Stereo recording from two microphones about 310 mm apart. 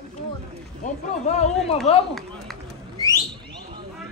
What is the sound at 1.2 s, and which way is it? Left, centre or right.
Speech, left.